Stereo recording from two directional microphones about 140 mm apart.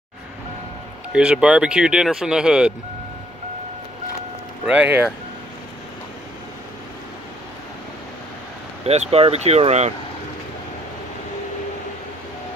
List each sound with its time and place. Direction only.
1.1 s speech: 5° right (ahead or behind)
4.6 s speech: 10° right (ahead or behind)
8.8 s speech: 50° right (ahead or behind)